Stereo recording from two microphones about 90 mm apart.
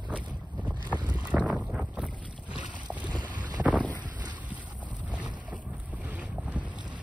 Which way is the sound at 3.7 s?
15° left (ahead or behind).